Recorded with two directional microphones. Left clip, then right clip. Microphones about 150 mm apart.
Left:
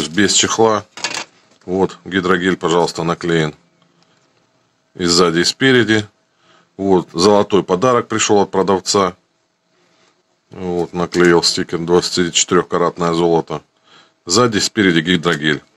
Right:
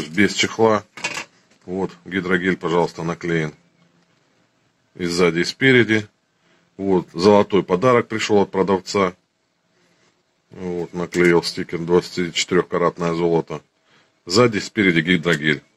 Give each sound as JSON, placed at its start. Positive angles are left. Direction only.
{"t": 0.0, "sound": "speech", "side_deg": 45}
{"t": 0.9, "sound": "a sound", "side_deg": 15}
{"t": 1.6, "sound": "speech", "side_deg": 40}
{"t": 4.9, "sound": "speech", "side_deg": 40}
{"t": 10.5, "sound": "speech", "side_deg": 40}